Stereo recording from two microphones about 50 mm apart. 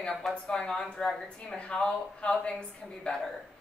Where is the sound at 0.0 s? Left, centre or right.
Centre.